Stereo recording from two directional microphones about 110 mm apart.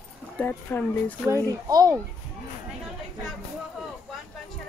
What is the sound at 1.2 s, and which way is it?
Speech, 30° right (ahead or behind).